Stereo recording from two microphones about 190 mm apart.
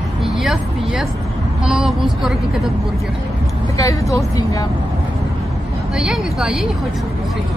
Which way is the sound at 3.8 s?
15° left (ahead or behind).